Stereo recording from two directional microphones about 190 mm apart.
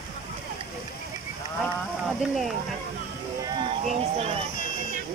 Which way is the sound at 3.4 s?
25° right (ahead or behind).